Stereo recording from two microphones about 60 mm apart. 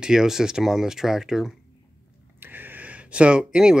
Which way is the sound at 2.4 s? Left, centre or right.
Right.